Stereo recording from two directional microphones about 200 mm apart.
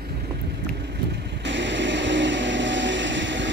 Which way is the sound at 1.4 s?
65° right (ahead or behind).